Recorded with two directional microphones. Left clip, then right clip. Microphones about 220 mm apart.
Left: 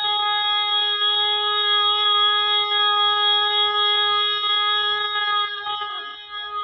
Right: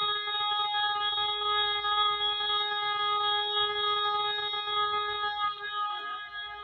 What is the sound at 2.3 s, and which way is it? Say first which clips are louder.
Music: left 10 dB; 50° left (ahead or behind).